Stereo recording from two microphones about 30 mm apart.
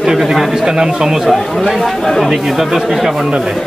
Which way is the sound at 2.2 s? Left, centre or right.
Centre.